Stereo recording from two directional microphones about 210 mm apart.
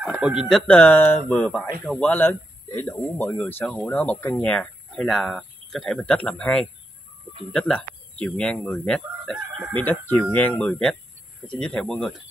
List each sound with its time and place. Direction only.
0.0 s speech: 5° right (ahead or behind)
7.5 s chicken: 5° left (ahead or behind)
9.8 s speech: 10° left (ahead or behind)